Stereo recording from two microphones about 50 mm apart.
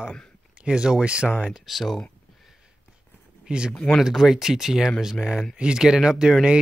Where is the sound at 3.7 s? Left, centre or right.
Centre.